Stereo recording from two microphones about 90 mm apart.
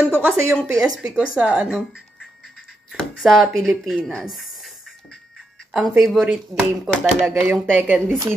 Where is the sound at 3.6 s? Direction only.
Centre (ahead or behind).